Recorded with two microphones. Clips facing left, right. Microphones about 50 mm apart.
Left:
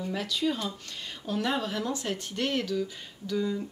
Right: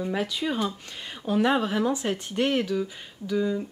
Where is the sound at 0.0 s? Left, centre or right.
Right.